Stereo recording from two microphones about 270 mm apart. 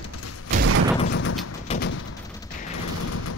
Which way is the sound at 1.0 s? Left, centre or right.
Left.